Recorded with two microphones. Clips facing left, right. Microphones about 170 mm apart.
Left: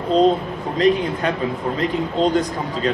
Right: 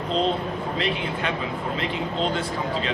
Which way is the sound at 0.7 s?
40° left (ahead or behind).